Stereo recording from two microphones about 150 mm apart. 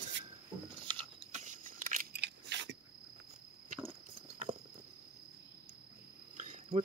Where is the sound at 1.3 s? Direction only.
55° right (ahead or behind).